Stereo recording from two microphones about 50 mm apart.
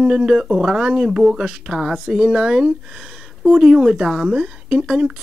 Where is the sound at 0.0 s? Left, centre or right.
Centre.